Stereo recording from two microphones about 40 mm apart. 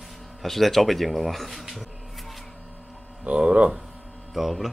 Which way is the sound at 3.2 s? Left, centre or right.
Right.